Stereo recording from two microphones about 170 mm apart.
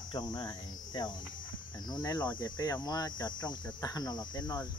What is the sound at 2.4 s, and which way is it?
Speech, 20° left (ahead or behind).